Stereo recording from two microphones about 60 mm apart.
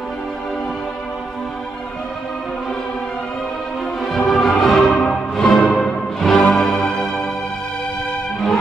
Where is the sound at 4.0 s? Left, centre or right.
Centre.